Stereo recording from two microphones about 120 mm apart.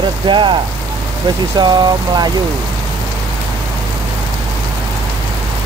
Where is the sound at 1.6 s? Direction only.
35° right (ahead or behind).